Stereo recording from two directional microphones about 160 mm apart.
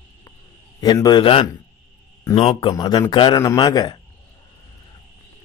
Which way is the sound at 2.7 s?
25° left (ahead or behind).